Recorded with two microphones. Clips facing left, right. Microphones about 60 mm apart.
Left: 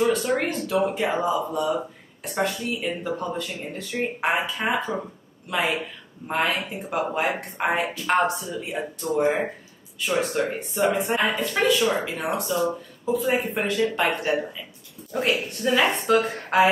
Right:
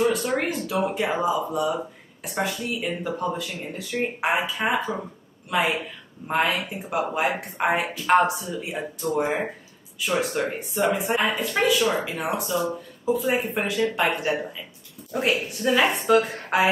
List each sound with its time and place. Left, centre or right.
0.0 s speech: centre